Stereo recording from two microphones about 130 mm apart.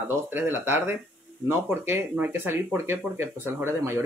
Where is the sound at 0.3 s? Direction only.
15° right (ahead or behind).